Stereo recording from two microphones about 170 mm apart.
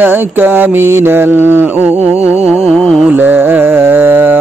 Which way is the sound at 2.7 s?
5° left (ahead or behind).